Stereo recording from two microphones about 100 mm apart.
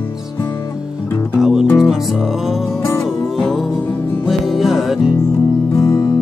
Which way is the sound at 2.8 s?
30° left (ahead or behind).